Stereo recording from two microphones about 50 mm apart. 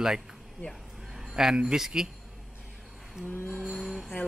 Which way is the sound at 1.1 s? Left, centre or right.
Centre.